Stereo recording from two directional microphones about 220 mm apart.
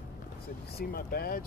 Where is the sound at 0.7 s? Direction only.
45° left (ahead or behind).